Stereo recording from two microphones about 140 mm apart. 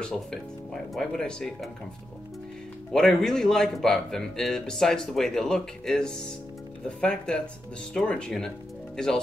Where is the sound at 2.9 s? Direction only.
5° left (ahead or behind).